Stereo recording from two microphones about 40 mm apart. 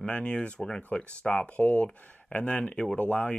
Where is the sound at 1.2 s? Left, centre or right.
Left.